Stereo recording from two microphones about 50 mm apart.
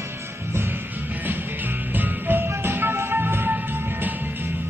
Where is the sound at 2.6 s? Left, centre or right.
Right.